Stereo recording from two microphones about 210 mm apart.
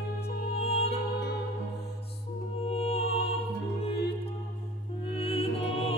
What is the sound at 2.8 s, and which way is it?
Music, 30° left (ahead or behind).